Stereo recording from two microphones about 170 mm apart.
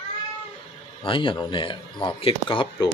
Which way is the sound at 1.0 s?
30° left (ahead or behind).